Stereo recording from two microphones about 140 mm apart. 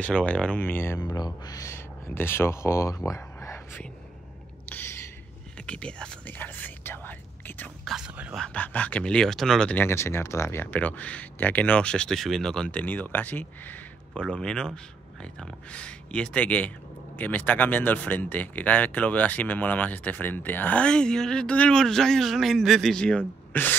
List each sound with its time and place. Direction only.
0.0 s speech: 10° left (ahead or behind)
0.9 s speech: 30° left (ahead or behind)
3.1 s a sound: 20° left (ahead or behind)
5.7 s whispering: 5° left (ahead or behind)
7.9 s a sound: 5° right (ahead or behind)
8.5 s speech: 10° left (ahead or behind)